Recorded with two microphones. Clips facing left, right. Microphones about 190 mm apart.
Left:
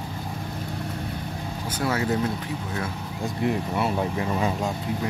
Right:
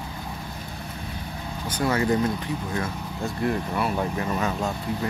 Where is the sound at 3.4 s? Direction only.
20° left (ahead or behind).